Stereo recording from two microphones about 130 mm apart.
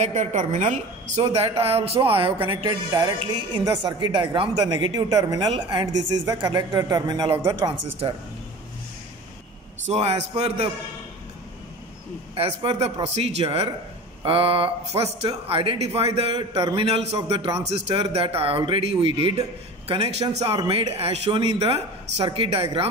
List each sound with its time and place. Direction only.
0.0 s a woman's voice: 65° right (ahead or behind)
1.2 s speech: 50° right (ahead or behind)
2.6 s a woman's voice: 30° right (ahead or behind)
9.8 s speech: 55° right (ahead or behind)
12.4 s speech: 50° right (ahead or behind)
20.5 s a woman's voice: 35° right (ahead or behind)